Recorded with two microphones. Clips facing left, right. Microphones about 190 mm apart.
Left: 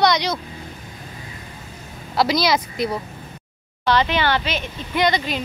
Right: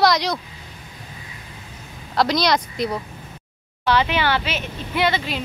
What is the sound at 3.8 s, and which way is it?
Speech, 10° right (ahead or behind).